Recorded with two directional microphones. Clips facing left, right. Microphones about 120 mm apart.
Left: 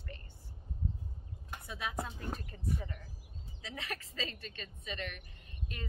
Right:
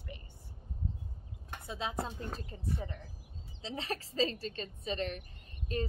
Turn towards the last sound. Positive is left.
turn(degrees=-35)  # may be behind; listen again after turning